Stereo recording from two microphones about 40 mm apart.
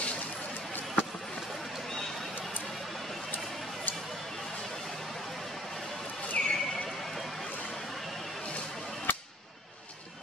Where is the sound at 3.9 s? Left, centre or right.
Left.